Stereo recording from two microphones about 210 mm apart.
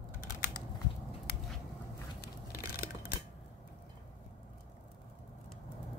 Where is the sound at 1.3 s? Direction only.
50° left (ahead or behind).